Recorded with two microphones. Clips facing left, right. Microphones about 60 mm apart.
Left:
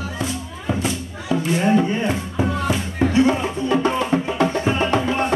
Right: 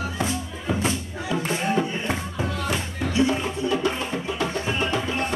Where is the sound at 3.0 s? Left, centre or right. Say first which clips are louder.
Left 6 dB; left.